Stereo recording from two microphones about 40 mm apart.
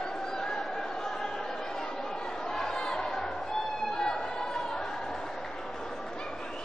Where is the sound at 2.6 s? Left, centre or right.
Centre.